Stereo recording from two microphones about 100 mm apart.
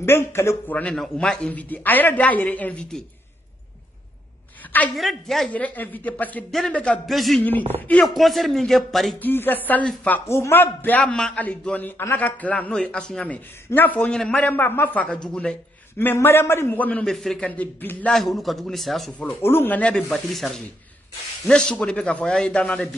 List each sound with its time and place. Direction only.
0.0 s a man's voice: 25° left (ahead or behind)
0.9 s speech: 5° left (ahead or behind)
1.5 s a woman's voice: 15° left (ahead or behind)
4.9 s speech: centre (ahead or behind)
5.5 s a woman's voice: 15° left (ahead or behind)
7.1 s speech: centre (ahead or behind)
9.2 s a man's voice: 20° left (ahead or behind)
17.0 s speech: 5° left (ahead or behind)
17.5 s a woman's voice: 15° left (ahead or behind)
18.1 s speech: centre (ahead or behind)
19.4 s a man's voice: 20° left (ahead or behind)
20.0 s a woman's voice: centre (ahead or behind)